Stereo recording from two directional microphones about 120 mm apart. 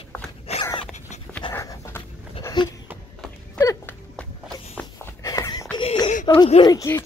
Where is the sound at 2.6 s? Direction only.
40° left (ahead or behind).